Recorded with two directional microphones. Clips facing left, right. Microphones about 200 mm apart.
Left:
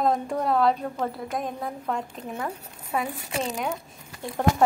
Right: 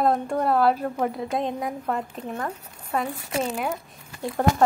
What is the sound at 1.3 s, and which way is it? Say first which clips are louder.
Speech: right 4 dB; 25° right (ahead or behind).